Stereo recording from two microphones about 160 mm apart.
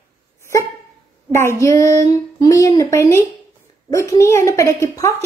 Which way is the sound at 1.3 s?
15° left (ahead or behind).